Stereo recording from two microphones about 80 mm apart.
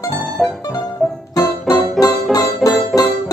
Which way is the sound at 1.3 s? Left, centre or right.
Left.